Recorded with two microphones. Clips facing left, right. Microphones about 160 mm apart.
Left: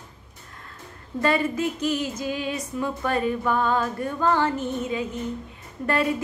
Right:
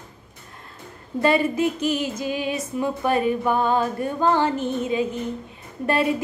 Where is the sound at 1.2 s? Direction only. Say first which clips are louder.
Right 3 dB; 20° right (ahead or behind).